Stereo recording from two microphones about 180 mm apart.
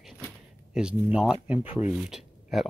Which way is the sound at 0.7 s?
5° right (ahead or behind).